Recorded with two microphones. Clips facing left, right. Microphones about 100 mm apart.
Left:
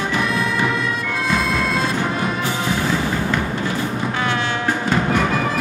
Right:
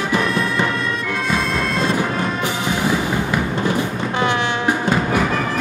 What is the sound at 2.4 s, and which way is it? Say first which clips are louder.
Music: right 1 dB; 15° right (ahead or behind).